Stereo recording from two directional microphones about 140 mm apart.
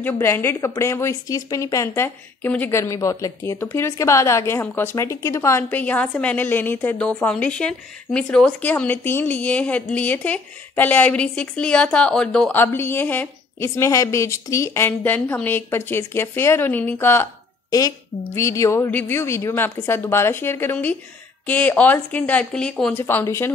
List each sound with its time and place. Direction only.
0.0 s speech: 15° left (ahead or behind)
22.9 s speech: 15° left (ahead or behind)